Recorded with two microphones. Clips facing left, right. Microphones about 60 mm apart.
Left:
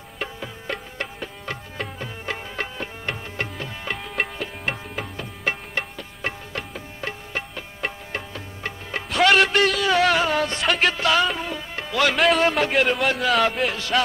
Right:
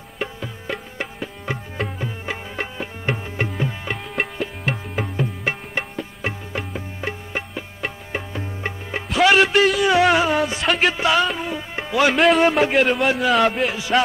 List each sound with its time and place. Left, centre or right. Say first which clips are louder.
0.2 s music: right 3 dB; centre
9.1 s a sound: right 2 dB; centre
11.1 s music: right 2 dB; centre
12.1 s a man's voice: right 3 dB; centre